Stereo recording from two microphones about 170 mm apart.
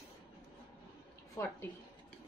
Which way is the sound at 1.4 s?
20° left (ahead or behind).